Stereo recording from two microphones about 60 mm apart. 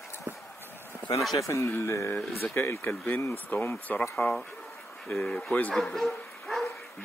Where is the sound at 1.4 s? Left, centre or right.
Left.